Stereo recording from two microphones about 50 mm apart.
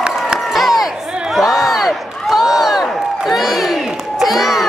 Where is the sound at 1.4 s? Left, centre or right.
Centre.